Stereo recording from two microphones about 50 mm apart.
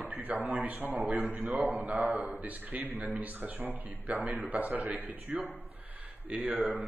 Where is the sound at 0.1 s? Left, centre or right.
Right.